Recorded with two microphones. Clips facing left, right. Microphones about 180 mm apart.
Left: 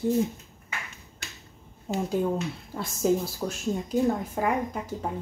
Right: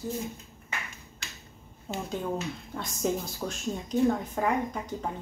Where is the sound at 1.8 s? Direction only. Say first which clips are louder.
Left 6 dB; 10° left (ahead or behind).